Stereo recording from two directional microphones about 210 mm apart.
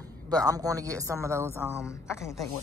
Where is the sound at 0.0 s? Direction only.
15° right (ahead or behind).